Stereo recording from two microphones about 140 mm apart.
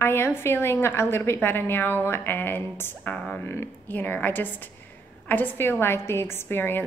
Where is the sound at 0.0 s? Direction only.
15° left (ahead or behind).